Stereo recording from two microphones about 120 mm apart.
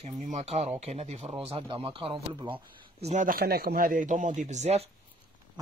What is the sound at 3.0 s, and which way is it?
Speech, 65° right (ahead or behind).